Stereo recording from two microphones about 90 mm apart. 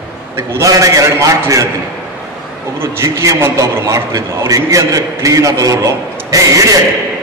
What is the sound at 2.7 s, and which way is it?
A man's voice, 30° right (ahead or behind).